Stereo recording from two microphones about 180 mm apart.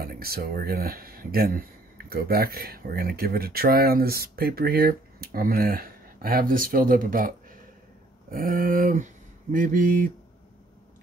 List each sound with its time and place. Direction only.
0.0 s speech: 55° right (ahead or behind)